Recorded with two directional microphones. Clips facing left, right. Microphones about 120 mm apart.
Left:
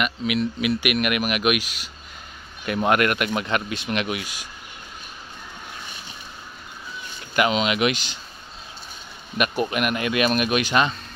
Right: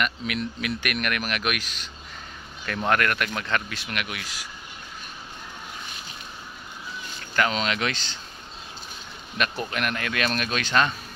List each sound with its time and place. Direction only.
0.0 s speech: 5° left (ahead or behind); by 4.5 s 20° left (ahead or behind)
7.3 s speech: 10° left (ahead or behind)
9.4 s speech: 15° left (ahead or behind)